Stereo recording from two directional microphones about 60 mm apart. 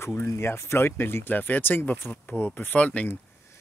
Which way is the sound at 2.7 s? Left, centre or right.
Left.